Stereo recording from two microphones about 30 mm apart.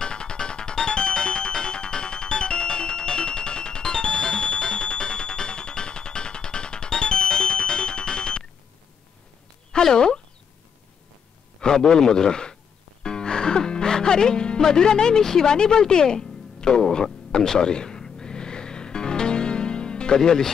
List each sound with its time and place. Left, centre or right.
0.0 s music: left
9.9 s speech: left
11.6 s a man's voice: left
13.0 s music: left
20.2 s speech: centre